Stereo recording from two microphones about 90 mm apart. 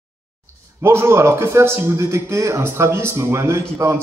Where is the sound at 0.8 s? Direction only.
30° right (ahead or behind).